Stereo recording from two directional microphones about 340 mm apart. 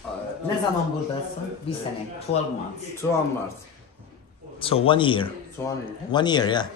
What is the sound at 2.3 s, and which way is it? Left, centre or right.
Speech, centre.